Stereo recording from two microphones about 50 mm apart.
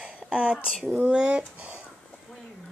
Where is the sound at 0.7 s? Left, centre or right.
Centre.